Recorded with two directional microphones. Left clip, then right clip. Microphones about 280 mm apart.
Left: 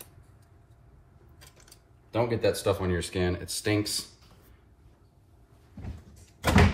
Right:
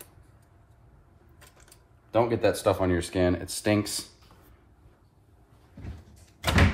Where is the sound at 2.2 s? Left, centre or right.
Centre.